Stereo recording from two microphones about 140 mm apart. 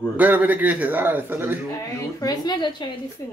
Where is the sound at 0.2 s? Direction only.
10° right (ahead or behind).